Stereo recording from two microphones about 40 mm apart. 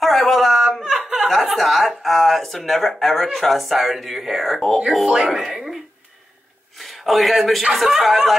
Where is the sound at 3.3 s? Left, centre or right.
Centre.